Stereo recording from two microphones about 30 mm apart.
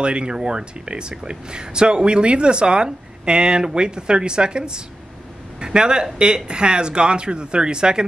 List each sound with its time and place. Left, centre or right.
0.0 s speech: right
0.3 s speech: right